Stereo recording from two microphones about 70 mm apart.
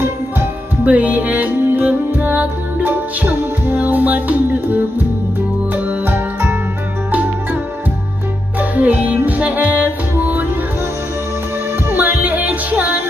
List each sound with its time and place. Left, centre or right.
0.8 s music: right
5.9 s music: right
8.5 s music: right
11.9 s music: right